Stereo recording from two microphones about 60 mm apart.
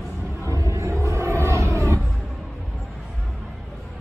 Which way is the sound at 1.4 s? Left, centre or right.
Right.